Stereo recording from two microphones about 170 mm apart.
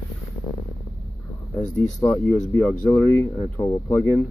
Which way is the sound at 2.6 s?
10° left (ahead or behind).